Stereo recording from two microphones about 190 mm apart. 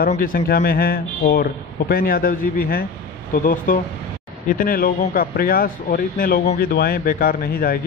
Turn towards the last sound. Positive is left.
turn(degrees=50)  # may be behind; listen again after turning